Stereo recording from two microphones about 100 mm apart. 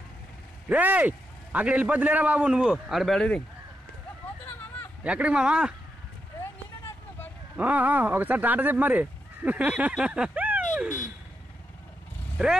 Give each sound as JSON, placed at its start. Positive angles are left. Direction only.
{"t": 0.7, "sound": "a man's voice", "side_deg": -15}
{"t": 5.0, "sound": "a man's voice", "side_deg": -10}
{"t": 7.5, "sound": "speech", "side_deg": -15}